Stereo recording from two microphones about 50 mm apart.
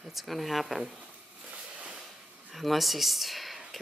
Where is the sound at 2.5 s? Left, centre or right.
Centre.